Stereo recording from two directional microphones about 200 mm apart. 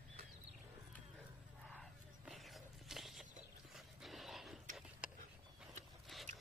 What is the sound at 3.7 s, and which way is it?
Dog, centre (ahead or behind).